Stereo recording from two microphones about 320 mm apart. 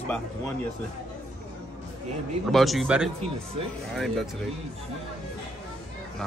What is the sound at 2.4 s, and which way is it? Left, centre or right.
A man's voice, centre.